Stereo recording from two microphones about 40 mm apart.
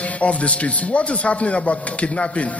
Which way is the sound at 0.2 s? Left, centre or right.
Left.